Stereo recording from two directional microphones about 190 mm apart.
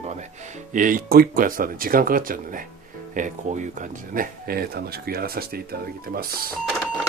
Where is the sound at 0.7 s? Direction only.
45° right (ahead or behind).